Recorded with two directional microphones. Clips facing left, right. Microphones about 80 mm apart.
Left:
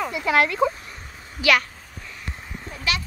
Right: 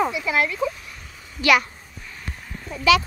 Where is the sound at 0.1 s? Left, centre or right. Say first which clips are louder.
Left 2 dB; left.